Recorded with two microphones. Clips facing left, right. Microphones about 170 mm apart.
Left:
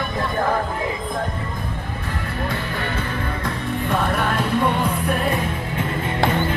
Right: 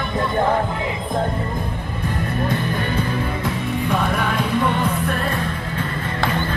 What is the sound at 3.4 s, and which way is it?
Music, centre (ahead or behind).